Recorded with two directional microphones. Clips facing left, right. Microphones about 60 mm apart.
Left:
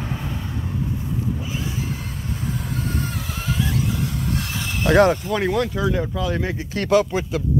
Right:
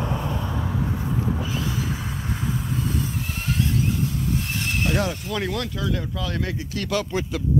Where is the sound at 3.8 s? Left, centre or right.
Left.